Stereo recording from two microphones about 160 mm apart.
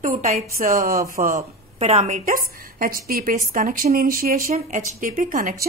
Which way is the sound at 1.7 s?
40° right (ahead or behind).